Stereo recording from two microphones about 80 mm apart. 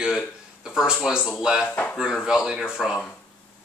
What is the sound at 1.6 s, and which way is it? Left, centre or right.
Speech, centre.